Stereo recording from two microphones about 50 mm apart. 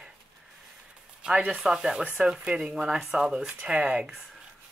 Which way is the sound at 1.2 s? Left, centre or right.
Centre.